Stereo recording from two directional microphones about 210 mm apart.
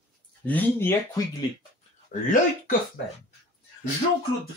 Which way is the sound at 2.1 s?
35° left (ahead or behind).